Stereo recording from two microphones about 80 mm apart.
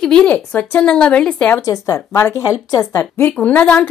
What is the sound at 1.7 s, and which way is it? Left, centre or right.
Speech, left.